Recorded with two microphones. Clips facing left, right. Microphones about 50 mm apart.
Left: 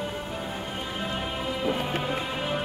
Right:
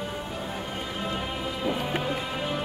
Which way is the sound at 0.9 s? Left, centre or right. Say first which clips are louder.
Even; centre.